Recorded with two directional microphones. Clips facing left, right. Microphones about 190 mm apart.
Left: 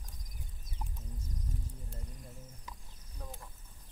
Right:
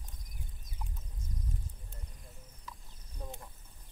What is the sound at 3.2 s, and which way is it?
Speech, 25° right (ahead or behind).